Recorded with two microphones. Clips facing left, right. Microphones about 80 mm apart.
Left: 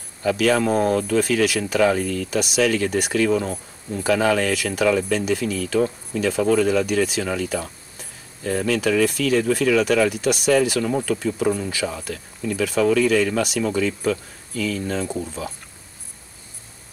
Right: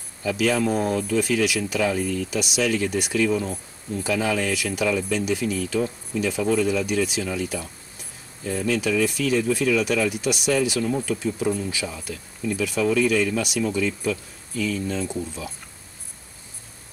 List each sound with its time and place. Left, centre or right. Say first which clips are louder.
0.2 s speech: left 3 dB; left